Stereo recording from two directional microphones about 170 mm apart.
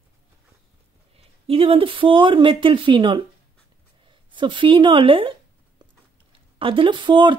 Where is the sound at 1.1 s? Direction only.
35° right (ahead or behind).